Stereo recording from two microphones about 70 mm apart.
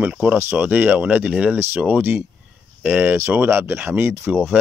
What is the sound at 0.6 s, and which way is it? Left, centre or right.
Speech, right.